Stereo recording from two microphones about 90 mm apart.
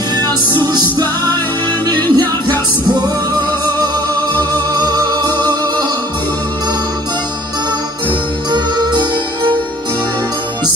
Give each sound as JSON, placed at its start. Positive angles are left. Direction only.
{"t": 0.7, "sound": "music", "side_deg": -50}
{"t": 4.7, "sound": "music", "side_deg": -45}
{"t": 8.5, "sound": "music", "side_deg": -55}